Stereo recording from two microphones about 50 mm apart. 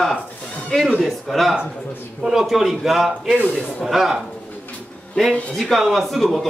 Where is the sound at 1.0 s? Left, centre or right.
Centre.